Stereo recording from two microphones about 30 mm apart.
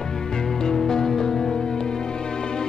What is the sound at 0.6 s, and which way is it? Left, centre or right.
Music, centre.